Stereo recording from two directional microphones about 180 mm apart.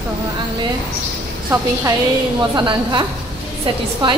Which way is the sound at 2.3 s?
25° right (ahead or behind).